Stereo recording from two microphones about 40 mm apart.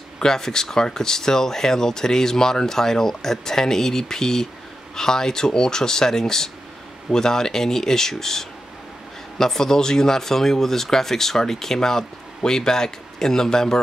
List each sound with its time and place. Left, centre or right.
0.2 s speech: centre